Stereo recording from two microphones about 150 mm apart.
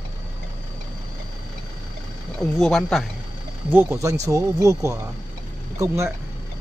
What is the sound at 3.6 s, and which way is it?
Speech, 15° right (ahead or behind).